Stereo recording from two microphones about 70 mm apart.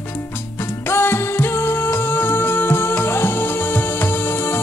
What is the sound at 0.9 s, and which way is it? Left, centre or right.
Music, left.